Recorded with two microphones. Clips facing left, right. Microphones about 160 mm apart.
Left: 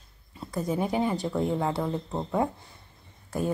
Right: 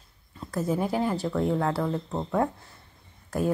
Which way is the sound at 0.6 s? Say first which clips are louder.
Right 1 dB; 5° right (ahead or behind).